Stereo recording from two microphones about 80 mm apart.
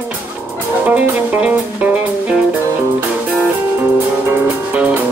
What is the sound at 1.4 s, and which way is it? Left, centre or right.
Music, centre.